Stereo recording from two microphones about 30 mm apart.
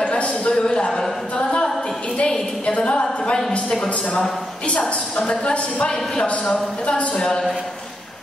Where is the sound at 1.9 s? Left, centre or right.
Left.